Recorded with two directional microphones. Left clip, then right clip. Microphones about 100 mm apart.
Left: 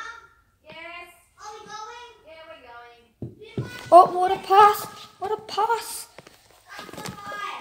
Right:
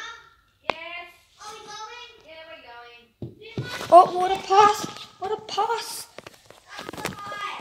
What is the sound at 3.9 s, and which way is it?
A woman's voice, centre (ahead or behind).